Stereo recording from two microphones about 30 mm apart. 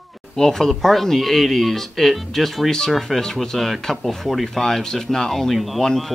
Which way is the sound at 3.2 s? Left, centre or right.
Centre.